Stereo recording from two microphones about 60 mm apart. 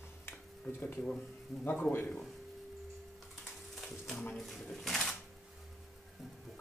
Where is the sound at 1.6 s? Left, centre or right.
Left.